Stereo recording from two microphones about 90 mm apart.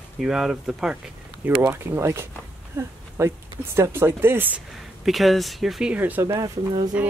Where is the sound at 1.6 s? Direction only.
30° right (ahead or behind).